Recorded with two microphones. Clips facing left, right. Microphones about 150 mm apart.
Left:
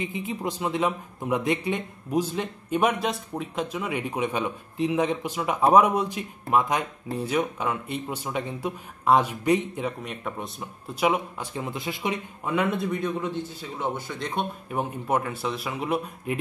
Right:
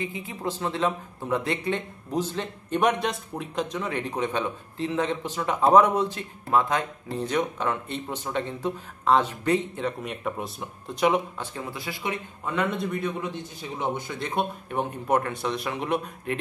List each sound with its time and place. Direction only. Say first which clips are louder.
0.0 s speech: left 2 dB; 20° left (ahead or behind)
10.0 s speech: right 2 dB; centre (ahead or behind)
11.5 s speech: left 6 dB; 20° left (ahead or behind); by 13.1 s centre (ahead or behind)
13.2 s a man's voice: left 3 dB; 15° right (ahead or behind)
14.7 s speech: right 1 dB; 5° left (ahead or behind)